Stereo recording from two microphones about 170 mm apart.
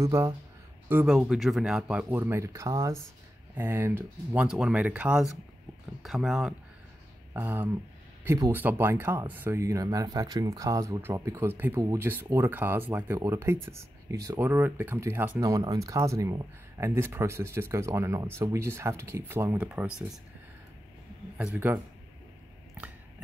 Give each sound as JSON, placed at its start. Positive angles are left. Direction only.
{"t": 0.0, "sound": "speech", "side_deg": -15}
{"t": 7.3, "sound": "speech", "side_deg": -10}
{"t": 21.5, "sound": "speech", "side_deg": -10}